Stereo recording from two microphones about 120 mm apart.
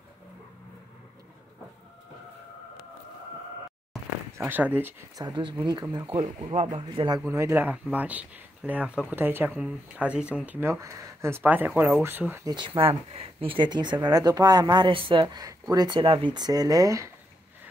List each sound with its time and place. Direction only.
4.4 s speech: 15° right (ahead or behind)
5.1 s speech: 35° right (ahead or behind); by 7.1 s 60° right (ahead or behind)
7.2 s speech: 25° right (ahead or behind)
12.4 s speech: 40° right (ahead or behind)
16.0 s speech: 50° right (ahead or behind); by 17.1 s 30° right (ahead or behind)